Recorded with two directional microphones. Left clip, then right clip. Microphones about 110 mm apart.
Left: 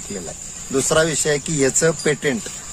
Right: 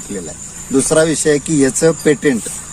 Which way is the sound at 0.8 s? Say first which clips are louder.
Right 5 dB; 30° left (ahead or behind).